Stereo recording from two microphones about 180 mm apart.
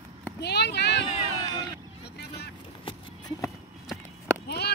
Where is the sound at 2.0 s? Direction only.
65° left (ahead or behind).